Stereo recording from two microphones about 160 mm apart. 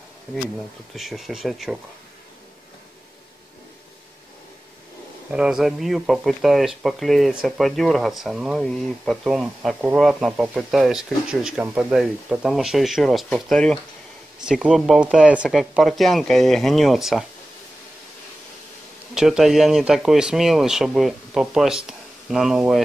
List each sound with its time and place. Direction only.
0.9 s speech: centre (ahead or behind)
5.3 s speech: 5° right (ahead or behind)
19.1 s speech: 5° right (ahead or behind)